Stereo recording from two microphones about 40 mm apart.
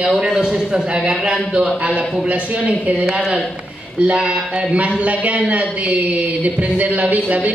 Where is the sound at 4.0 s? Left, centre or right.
Right.